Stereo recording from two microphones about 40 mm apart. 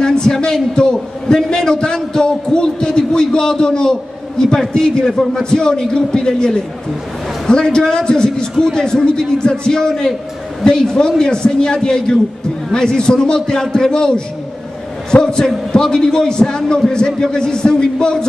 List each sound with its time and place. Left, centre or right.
0.0 s a man's voice: centre
15.2 s a man's voice: centre